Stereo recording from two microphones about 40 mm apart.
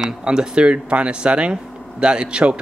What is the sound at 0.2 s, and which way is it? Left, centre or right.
Speech, right.